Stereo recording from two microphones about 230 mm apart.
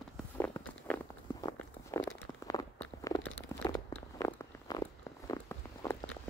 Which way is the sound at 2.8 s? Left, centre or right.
Centre.